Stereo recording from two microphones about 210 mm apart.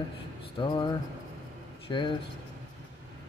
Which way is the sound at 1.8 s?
25° left (ahead or behind).